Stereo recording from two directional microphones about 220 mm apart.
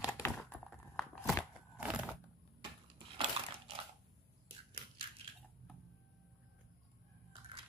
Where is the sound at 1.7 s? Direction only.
5° right (ahead or behind).